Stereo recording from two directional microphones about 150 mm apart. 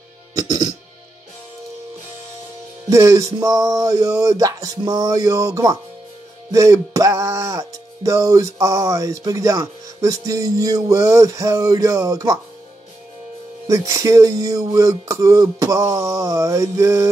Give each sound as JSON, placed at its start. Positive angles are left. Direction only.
{"t": 0.3, "sound": "music", "side_deg": -25}
{"t": 2.9, "sound": "music", "side_deg": -20}
{"t": 13.7, "sound": "music", "side_deg": -20}